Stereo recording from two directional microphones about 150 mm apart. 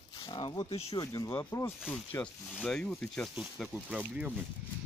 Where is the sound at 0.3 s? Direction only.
30° left (ahead or behind).